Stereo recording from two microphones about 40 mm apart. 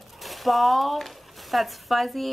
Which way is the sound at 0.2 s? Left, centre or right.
Centre.